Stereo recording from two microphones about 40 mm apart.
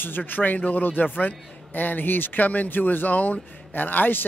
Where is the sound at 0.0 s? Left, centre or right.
Left.